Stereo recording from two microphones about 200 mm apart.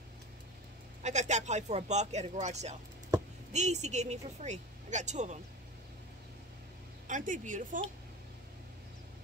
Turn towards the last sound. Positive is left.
turn(degrees=-40)  # may be behind; listen again after turning